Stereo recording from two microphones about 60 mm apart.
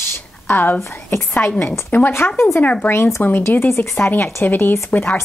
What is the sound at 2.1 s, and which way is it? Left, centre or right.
Speech, left.